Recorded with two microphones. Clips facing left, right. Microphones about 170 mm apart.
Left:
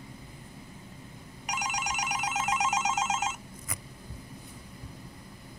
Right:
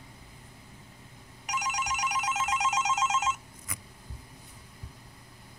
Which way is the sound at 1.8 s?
50° left (ahead or behind).